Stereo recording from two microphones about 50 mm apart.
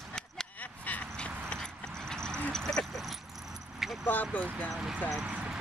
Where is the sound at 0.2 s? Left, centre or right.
Centre.